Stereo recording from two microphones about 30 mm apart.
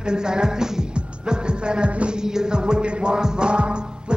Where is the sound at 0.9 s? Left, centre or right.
Right.